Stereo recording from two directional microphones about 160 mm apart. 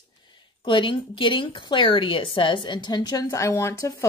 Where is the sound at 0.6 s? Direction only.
30° left (ahead or behind).